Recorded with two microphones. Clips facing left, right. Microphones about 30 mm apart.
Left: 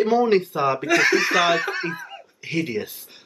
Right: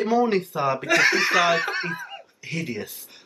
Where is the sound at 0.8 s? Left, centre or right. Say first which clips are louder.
Even; centre.